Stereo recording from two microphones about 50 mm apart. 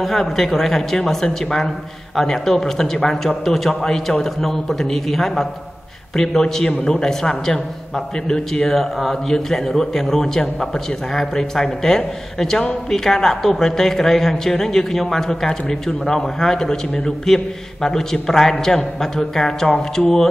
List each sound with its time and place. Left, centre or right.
0.0 s a man's voice: centre